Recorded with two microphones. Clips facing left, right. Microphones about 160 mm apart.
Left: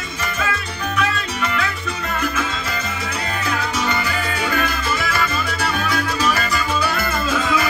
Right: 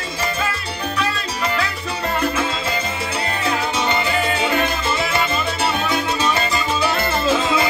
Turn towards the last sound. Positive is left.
turn(degrees=-25)  # may be behind; listen again after turning